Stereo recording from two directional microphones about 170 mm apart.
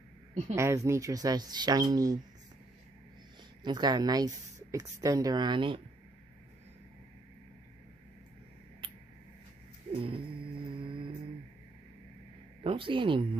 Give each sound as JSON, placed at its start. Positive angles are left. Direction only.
{"t": 0.6, "sound": "a woman's voice", "side_deg": -15}
{"t": 3.6, "sound": "a woman's voice", "side_deg": -25}
{"t": 9.9, "sound": "a sound", "side_deg": -30}
{"t": 12.6, "sound": "a woman's voice", "side_deg": -30}